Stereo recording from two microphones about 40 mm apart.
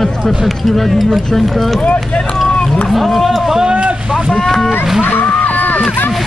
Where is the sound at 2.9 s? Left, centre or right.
Centre.